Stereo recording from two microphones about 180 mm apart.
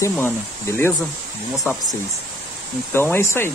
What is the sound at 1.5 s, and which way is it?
Speech, centre (ahead or behind).